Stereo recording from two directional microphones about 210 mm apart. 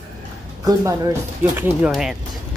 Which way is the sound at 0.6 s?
15° right (ahead or behind).